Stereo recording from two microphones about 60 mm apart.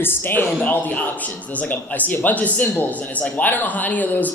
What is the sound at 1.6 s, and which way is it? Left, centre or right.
Speech, left.